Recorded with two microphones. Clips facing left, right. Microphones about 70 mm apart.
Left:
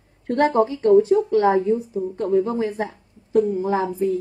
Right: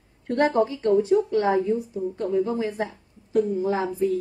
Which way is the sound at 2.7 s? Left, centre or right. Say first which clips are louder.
Left 2 dB; left.